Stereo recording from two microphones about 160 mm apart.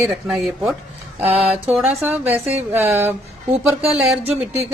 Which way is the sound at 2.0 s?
15° right (ahead or behind).